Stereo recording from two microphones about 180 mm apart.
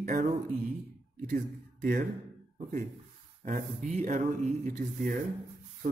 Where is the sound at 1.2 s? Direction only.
50° right (ahead or behind).